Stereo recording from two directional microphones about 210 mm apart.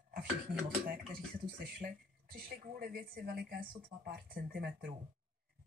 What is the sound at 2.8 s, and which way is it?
Speech, 45° right (ahead or behind).